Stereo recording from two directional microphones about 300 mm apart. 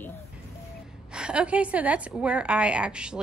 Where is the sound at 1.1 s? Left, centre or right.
Centre.